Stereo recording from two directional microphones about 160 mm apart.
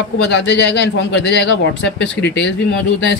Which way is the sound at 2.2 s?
90° left.